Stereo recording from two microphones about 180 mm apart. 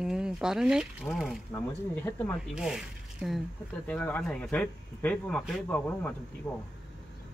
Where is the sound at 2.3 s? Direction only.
Centre (ahead or behind).